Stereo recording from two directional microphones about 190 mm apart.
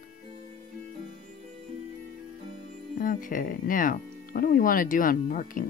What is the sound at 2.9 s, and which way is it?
Speech, 45° left (ahead or behind).